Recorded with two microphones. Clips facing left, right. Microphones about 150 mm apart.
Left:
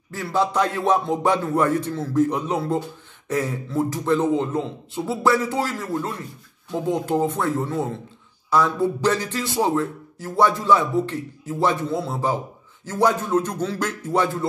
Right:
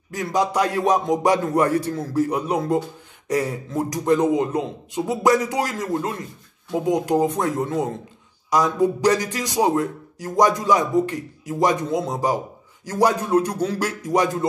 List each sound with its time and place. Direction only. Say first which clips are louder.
0.1 s a man's voice: right 1 dB; 15° right (ahead or behind)